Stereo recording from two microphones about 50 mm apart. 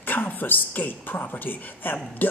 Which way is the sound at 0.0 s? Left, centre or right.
Left.